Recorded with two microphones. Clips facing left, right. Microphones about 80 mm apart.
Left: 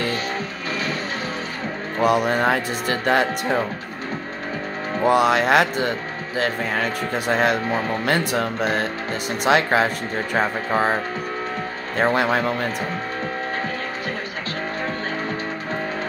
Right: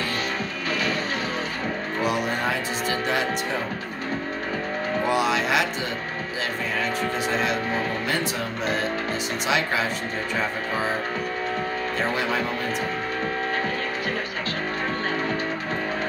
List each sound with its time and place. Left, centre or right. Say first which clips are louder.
2.0 s speech: left 8 dB; left
5.0 s speech: left 7 dB; left
12.0 s speech: left 8 dB; left